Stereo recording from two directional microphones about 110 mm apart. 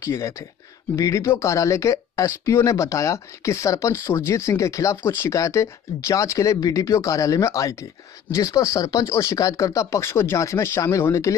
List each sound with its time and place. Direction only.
0.0 s speech: 25° left (ahead or behind)